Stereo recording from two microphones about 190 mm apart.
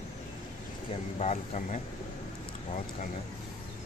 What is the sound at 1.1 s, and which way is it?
Speech, 35° left (ahead or behind).